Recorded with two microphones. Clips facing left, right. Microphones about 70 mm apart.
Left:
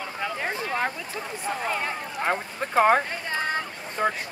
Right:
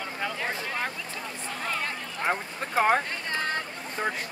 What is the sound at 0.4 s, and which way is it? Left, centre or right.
Speech, left.